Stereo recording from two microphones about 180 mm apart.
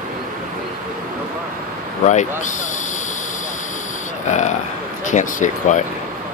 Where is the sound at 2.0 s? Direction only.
40° left (ahead or behind).